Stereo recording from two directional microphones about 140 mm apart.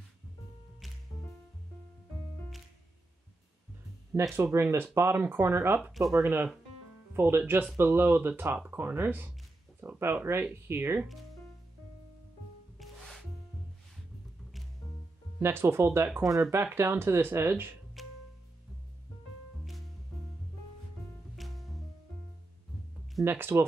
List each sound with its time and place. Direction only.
4.3 s speech: 15° right (ahead or behind)
5.9 s speech: centre (ahead or behind)
6.1 s speech: 15° right (ahead or behind)
12.7 s music: centre (ahead or behind)
15.3 s speech: 15° right (ahead or behind)
18.0 s music: centre (ahead or behind)
21.4 s music: centre (ahead or behind)
23.2 s speech: 15° right (ahead or behind)